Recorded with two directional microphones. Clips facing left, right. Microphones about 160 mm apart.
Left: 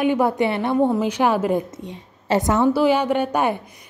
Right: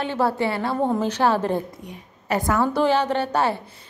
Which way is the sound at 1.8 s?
25° left (ahead or behind).